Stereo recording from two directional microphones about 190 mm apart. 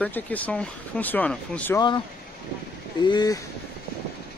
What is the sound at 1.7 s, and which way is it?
Speech, 25° left (ahead or behind).